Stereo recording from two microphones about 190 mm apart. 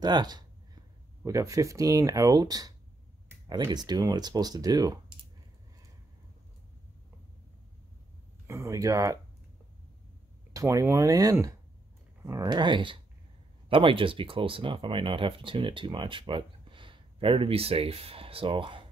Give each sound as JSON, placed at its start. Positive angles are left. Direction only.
{"t": 0.0, "sound": "speech", "side_deg": -20}
{"t": 8.5, "sound": "speech", "side_deg": -15}
{"t": 10.5, "sound": "speech", "side_deg": -15}